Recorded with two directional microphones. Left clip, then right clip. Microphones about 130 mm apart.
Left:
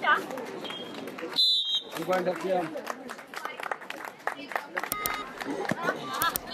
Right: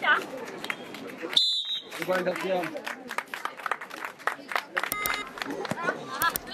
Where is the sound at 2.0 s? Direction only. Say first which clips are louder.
Right 2 dB; 10° right (ahead or behind).